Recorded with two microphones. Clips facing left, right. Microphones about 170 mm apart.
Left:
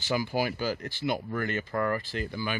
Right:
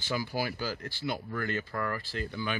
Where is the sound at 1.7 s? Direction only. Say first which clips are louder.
Left 5 dB; 30° left (ahead or behind).